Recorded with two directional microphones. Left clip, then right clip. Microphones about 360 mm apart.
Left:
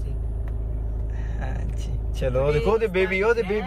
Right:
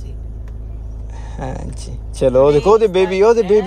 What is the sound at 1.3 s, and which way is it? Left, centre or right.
Speech, centre.